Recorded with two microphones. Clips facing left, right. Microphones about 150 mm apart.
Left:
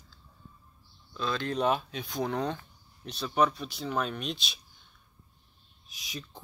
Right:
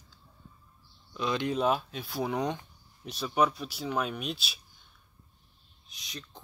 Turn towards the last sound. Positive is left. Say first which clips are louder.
# left 3 dB
turn(degrees=5)  # may be behind; listen again after turning